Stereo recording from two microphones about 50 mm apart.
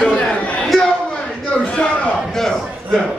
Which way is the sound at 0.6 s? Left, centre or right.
Centre.